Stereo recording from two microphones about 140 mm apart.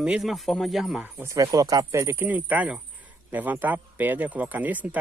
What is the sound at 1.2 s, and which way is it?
Speech, 25° right (ahead or behind).